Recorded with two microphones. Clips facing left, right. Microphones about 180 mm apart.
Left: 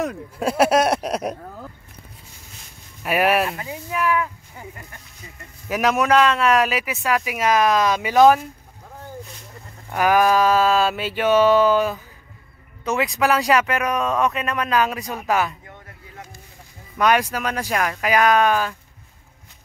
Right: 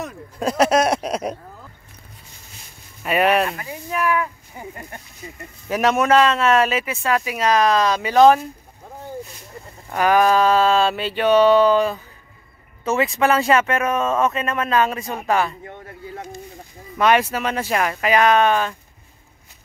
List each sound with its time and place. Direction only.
0.4 s speech: 5° left (ahead or behind)
3.0 s speech: 5° left (ahead or behind)
3.5 s speech: 15° left (ahead or behind)
4.6 s speech: 15° right (ahead or behind)
5.7 s speech: centre (ahead or behind)
9.8 s speech: 5° left (ahead or behind)
15.6 s a sound: 30° right (ahead or behind)
17.0 s speech: centre (ahead or behind)